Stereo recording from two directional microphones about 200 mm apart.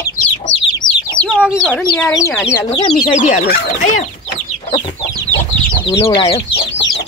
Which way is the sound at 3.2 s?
40° left (ahead or behind).